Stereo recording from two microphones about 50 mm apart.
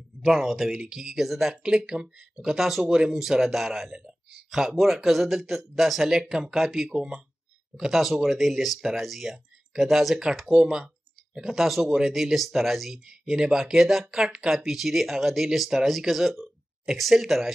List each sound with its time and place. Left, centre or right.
0.2 s speech: centre
1.5 s speech: centre
2.5 s speech: centre
6.9 s speech: centre
7.7 s speech: centre
13.2 s speech: centre